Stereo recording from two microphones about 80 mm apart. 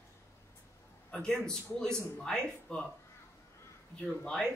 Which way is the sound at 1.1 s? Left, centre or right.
Centre.